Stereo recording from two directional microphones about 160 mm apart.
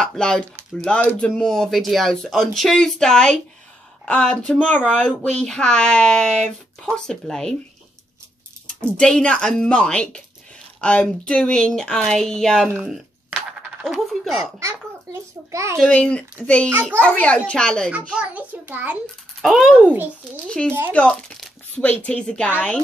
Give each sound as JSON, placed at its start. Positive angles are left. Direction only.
{"t": 0.0, "sound": "a sound", "side_deg": 5}
{"t": 1.2, "sound": "speech", "side_deg": 5}
{"t": 8.8, "sound": "speech", "side_deg": 5}
{"t": 12.7, "sound": "coin", "side_deg": -5}
{"t": 14.3, "sound": "a child's voice", "side_deg": -20}
{"t": 15.8, "sound": "speech", "side_deg": 5}
{"t": 17.9, "sound": "a child's voice", "side_deg": -10}
{"t": 20.4, "sound": "speech", "side_deg": 5}